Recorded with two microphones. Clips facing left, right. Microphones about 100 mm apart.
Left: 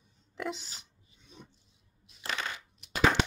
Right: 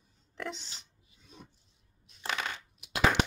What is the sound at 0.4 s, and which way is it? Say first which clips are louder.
Pig: left 3 dB; 5° left (ahead or behind).